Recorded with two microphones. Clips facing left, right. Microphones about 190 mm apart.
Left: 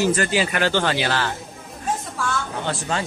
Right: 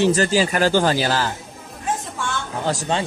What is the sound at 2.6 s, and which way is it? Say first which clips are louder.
Speech: right 3 dB; 40° right (ahead or behind).